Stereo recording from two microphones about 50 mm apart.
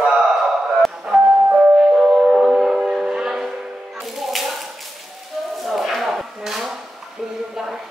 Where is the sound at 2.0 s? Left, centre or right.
Centre.